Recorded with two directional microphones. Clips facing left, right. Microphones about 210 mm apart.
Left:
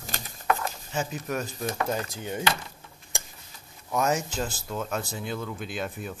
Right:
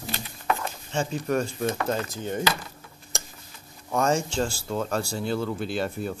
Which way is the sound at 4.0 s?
5° left (ahead or behind).